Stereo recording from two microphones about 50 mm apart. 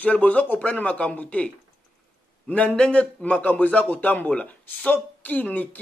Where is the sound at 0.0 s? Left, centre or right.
Left.